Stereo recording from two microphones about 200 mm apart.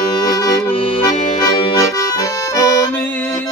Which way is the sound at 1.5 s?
20° left (ahead or behind).